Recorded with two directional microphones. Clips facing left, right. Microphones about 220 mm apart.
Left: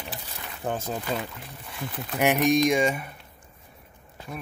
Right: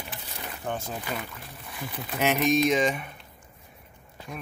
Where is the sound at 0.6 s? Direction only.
35° left (ahead or behind).